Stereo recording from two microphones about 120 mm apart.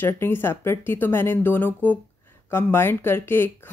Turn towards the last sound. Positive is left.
turn(degrees=15)  # may be behind; listen again after turning